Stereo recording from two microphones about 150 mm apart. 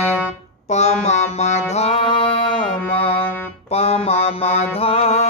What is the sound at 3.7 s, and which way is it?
Mantra, 40° left (ahead or behind).